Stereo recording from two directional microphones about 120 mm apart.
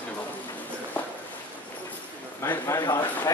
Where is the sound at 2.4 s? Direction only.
25° left (ahead or behind).